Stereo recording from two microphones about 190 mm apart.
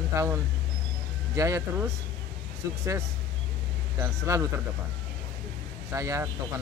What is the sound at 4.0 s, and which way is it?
Speech, 15° right (ahead or behind).